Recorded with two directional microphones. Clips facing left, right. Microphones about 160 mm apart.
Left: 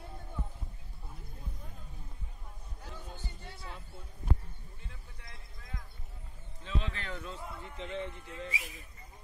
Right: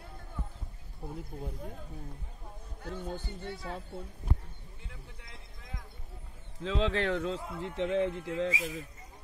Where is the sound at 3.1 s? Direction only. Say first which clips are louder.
Right 9 dB; 70° right (ahead or behind).